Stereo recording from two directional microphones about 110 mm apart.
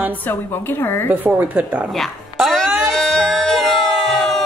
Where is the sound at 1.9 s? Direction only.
Centre (ahead or behind).